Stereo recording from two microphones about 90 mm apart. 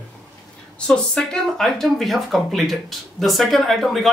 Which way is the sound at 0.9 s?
10° left (ahead or behind).